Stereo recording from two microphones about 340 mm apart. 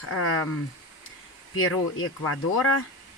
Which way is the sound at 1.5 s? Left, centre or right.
Left.